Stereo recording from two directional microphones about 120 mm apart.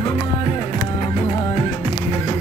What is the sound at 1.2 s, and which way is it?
Music, 50° left (ahead or behind).